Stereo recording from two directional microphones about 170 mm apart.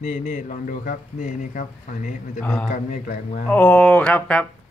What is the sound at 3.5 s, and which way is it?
Speech, 10° left (ahead or behind).